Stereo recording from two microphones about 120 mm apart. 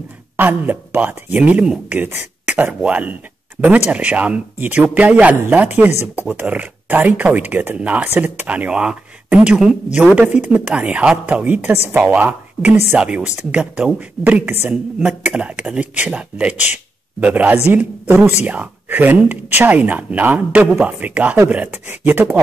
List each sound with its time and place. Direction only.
0.4 s speech: 15° right (ahead or behind)